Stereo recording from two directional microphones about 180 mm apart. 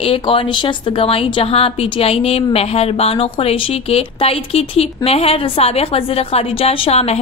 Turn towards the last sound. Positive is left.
turn(degrees=35)  # may be behind; listen again after turning